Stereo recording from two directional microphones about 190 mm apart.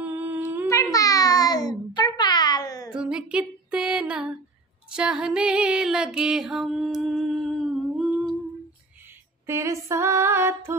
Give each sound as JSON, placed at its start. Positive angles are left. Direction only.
{"t": 0.0, "sound": "humming", "side_deg": -10}
{"t": 0.9, "sound": "a sound", "side_deg": 20}
{"t": 2.9, "sound": "female singing", "side_deg": -5}
{"t": 4.9, "sound": "music", "side_deg": -5}
{"t": 9.5, "sound": "music", "side_deg": -15}